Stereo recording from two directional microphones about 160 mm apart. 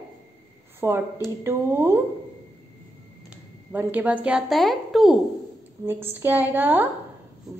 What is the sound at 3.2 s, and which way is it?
A woman's voice, 10° right (ahead or behind).